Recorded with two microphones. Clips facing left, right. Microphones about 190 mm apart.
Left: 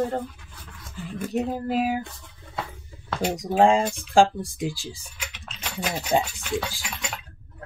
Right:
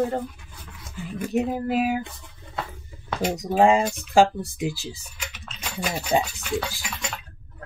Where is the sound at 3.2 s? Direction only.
10° left (ahead or behind).